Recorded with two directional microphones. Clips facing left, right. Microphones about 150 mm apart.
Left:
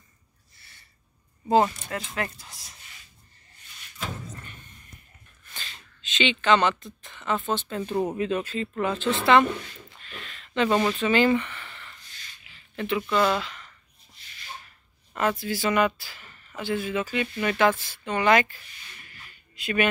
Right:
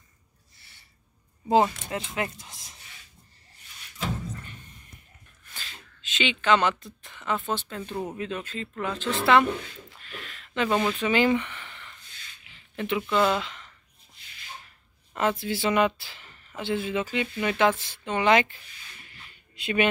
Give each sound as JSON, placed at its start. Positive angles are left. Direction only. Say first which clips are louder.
{"t": 1.5, "sound": "speech", "louder": "even", "side_deg": -15}
{"t": 5.5, "sound": "speech", "louder": "left 1 dB", "side_deg": -5}
{"t": 8.2, "sound": "speech", "louder": "left 6 dB", "side_deg": 10}
{"t": 11.0, "sound": "speech", "louder": "left 1 dB", "side_deg": -15}
{"t": 15.1, "sound": "speech", "louder": "even", "side_deg": -20}
{"t": 19.2, "sound": "a sound", "louder": "even", "side_deg": -25}